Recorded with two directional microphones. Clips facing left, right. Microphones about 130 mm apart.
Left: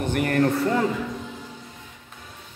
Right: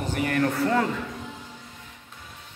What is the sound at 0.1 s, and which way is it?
Speech, 55° left (ahead or behind).